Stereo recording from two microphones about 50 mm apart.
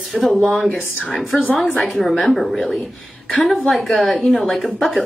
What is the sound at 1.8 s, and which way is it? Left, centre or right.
Speech, centre.